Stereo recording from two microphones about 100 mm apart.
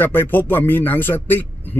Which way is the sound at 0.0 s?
20° left (ahead or behind).